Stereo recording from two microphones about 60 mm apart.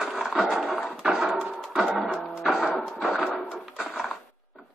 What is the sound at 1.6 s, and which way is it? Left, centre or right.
Music, centre.